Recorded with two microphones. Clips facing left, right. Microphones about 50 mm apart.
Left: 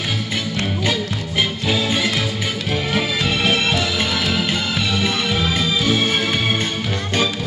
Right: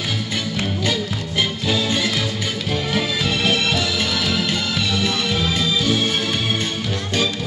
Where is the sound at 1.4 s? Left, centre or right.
Centre.